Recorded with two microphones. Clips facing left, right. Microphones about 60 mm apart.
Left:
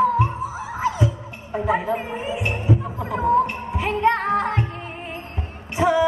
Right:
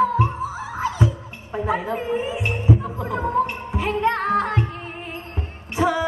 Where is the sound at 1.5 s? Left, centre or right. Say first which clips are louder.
Left 2 dB; left.